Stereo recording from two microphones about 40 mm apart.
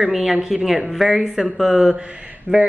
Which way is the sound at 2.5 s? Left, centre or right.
Right.